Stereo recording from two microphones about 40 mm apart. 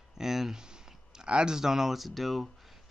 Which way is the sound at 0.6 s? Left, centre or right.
Centre.